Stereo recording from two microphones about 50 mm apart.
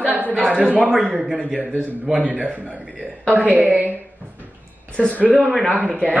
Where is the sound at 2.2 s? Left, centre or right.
Right.